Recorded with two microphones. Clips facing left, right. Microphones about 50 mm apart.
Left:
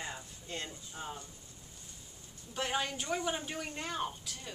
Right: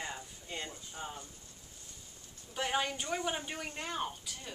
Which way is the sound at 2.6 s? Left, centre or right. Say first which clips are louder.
Right 1 dB; centre.